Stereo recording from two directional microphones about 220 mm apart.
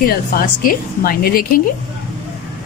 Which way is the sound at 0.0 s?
40° left (ahead or behind).